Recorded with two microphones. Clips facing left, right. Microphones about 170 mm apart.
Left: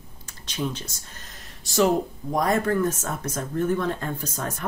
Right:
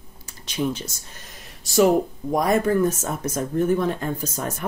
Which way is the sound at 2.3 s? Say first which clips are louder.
Right 3 dB; 15° right (ahead or behind).